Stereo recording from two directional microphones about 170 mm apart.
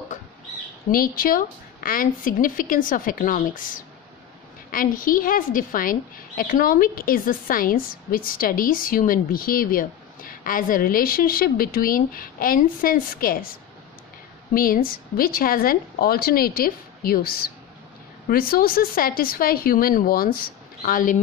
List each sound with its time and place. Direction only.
0.9 s a woman's voice: 55° left (ahead or behind)
14.5 s a woman's voice: 60° left (ahead or behind)